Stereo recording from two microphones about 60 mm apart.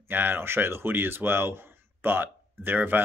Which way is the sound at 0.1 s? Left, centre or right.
Right.